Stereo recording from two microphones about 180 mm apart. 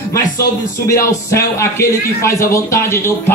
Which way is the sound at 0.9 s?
15° left (ahead or behind).